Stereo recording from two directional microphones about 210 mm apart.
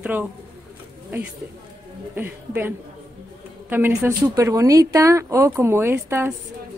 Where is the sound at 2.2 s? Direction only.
10° right (ahead or behind).